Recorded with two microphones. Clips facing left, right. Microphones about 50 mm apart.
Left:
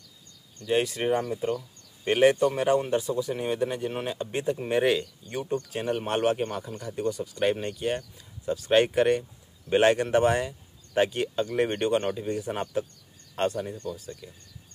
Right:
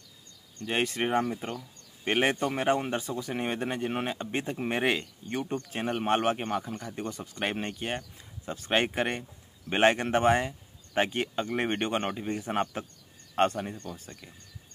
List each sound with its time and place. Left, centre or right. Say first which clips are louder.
0.6 s speech: left 3 dB; right
7.0 s speech: left 8 dB; right